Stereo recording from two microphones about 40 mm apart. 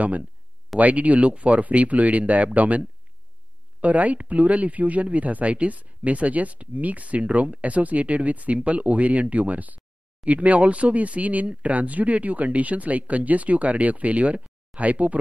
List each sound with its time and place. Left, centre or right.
0.7 s speech: right
3.8 s speech: right